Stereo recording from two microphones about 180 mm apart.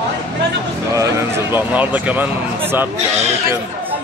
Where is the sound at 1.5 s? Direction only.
10° right (ahead or behind).